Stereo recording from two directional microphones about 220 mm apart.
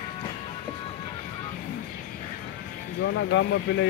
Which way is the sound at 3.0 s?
60° left (ahead or behind).